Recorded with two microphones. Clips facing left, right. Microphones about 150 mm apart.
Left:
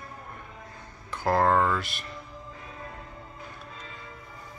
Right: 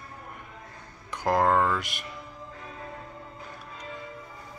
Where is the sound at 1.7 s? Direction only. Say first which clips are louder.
Even; 15° right (ahead or behind).